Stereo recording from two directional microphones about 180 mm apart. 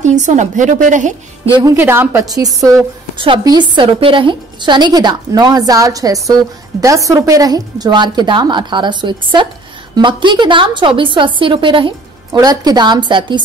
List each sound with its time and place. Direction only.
0.0 s a woman's voice: 40° right (ahead or behind)
1.5 s a woman's voice: 20° right (ahead or behind)